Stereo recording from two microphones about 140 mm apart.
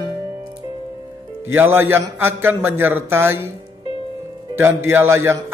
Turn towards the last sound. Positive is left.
turn(degrees=-20)  # may be behind; listen again after turning